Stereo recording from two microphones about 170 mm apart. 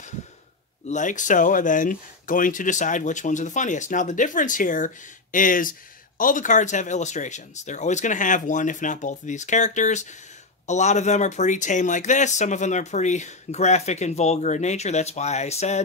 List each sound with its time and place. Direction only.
0.8 s speech: 45° left (ahead or behind)